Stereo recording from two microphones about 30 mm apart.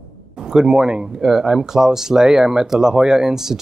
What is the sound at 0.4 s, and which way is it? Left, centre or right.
Speech, centre.